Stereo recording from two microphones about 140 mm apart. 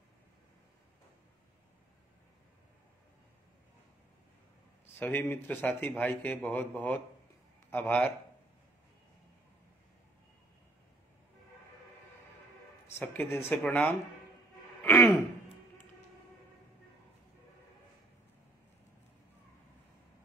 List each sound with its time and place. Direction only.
4.9 s a man's voice: 15° left (ahead or behind)
12.9 s a man's voice: 10° left (ahead or behind)
14.8 s throat clearing: 20° left (ahead or behind)